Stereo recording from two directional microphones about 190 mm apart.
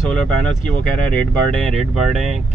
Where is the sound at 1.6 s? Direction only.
Centre (ahead or behind).